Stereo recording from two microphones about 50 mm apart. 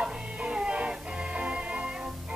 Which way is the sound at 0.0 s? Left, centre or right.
Centre.